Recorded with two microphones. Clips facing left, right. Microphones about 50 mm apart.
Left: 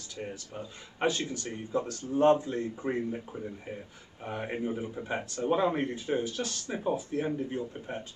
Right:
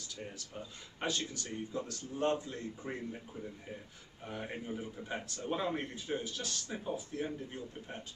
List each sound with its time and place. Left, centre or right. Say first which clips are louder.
0.9 s speech: left 7 dB; left
1.7 s speech: left 9 dB; left